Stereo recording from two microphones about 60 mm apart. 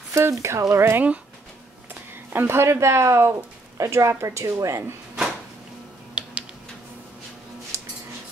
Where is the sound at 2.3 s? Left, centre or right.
Right.